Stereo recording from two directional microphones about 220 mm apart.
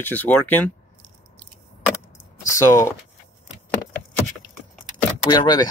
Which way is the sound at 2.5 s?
15° left (ahead or behind).